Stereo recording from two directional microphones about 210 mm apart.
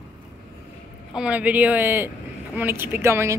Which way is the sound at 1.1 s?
5° right (ahead or behind).